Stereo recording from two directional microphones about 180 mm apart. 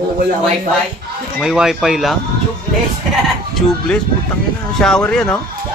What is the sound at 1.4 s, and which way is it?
Speech, 5° right (ahead or behind).